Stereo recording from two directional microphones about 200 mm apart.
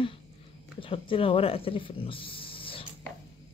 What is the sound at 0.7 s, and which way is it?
Speech, 25° left (ahead or behind).